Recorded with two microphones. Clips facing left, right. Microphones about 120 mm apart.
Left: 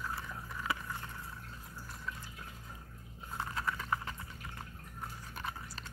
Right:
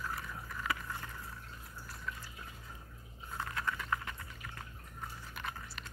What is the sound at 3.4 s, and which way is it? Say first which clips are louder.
Chewing: left 1 dB; 30° left (ahead or behind).